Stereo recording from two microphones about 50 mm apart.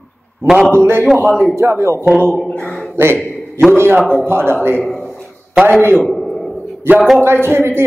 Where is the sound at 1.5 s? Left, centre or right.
Right.